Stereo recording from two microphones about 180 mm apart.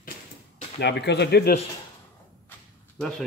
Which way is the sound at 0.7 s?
70° left (ahead or behind).